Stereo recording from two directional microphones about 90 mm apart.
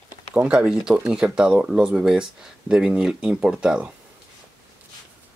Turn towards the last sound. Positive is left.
turn(degrees=-10)  # may be behind; listen again after turning